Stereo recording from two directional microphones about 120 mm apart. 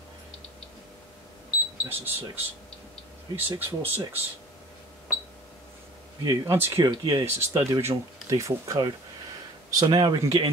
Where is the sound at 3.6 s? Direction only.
15° right (ahead or behind).